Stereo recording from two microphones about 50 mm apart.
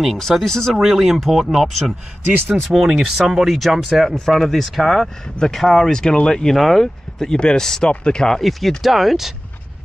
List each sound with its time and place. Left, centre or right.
0.0 s speech: centre
0.7 s speech: centre
8.4 s speech: centre